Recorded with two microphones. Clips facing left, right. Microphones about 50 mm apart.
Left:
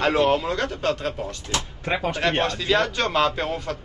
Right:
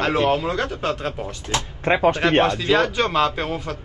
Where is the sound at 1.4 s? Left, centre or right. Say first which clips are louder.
Right 7 dB; right.